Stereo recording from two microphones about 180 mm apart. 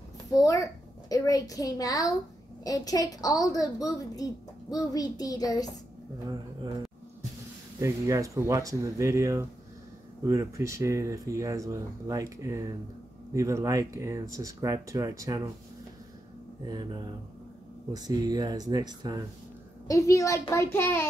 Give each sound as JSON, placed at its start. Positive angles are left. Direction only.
{"t": 0.3, "sound": "a woman's voice", "side_deg": 20}
{"t": 6.2, "sound": "speech", "side_deg": -20}
{"t": 7.8, "sound": "speech", "side_deg": -15}
{"t": 16.6, "sound": "speech", "side_deg": -25}
{"t": 19.9, "sound": "a child's voice", "side_deg": 15}